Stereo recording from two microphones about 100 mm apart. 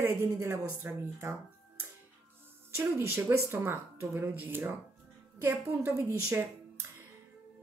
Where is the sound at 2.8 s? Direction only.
25° right (ahead or behind).